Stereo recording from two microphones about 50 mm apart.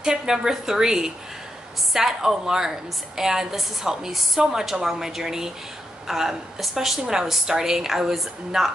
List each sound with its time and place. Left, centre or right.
0.0 s a woman's voice: centre